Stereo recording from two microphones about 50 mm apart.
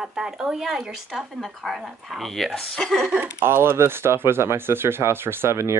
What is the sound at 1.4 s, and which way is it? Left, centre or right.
Speech, centre.